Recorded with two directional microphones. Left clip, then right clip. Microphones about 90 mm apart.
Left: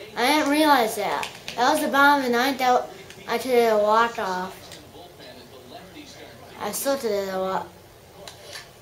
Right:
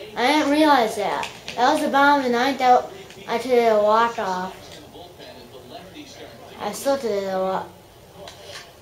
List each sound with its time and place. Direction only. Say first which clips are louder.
0.1 s a sound: right 2 dB; 35° left (ahead or behind)
0.9 s a woman's voice: right 2 dB; 35° left (ahead or behind)
6.6 s a woman's voice: right 2 dB; 40° left (ahead or behind)